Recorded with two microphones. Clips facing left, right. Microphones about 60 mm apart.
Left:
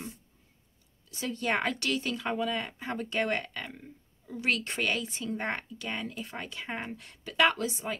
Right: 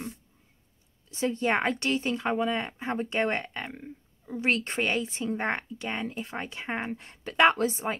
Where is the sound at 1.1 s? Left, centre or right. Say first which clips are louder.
Right 4 dB; right.